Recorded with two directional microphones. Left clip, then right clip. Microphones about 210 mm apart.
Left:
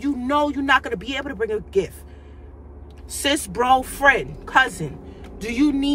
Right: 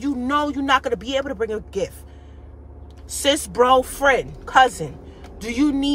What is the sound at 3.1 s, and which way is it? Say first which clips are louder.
Speech: right 2 dB; 15° right (ahead or behind).